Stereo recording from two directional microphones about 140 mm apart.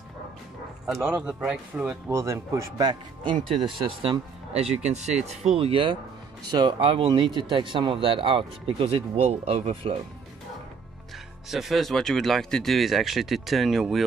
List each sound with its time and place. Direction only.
1.0 s speech: 5° right (ahead or behind)
2.0 s speech: 20° right (ahead or behind); by 4.6 s 40° right (ahead or behind)
4.8 s speech: 50° right (ahead or behind)
5.6 s speech: 40° right (ahead or behind)
11.5 s speech: centre (ahead or behind)